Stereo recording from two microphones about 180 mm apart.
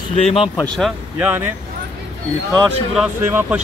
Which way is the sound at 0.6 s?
5° left (ahead or behind).